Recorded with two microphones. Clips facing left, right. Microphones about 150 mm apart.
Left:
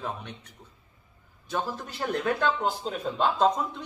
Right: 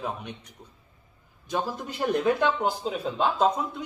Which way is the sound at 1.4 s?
15° right (ahead or behind).